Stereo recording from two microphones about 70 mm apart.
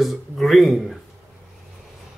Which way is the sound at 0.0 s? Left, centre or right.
Centre.